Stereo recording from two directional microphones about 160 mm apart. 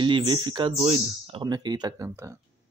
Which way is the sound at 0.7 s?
40° right (ahead or behind).